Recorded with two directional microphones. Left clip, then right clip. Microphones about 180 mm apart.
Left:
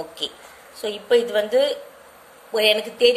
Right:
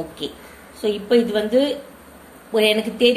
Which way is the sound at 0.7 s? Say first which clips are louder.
Right 1 dB; 30° left (ahead or behind).